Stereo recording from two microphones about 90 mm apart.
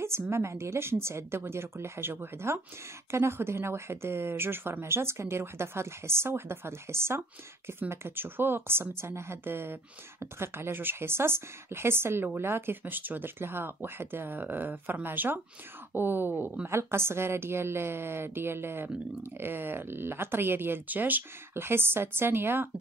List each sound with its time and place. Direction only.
0.3 s a woman's voice: 30° right (ahead or behind)